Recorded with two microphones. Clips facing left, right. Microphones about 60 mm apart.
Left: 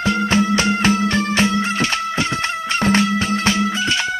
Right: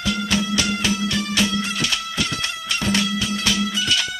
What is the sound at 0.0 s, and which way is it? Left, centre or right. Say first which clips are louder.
Music: left 6 dB; left.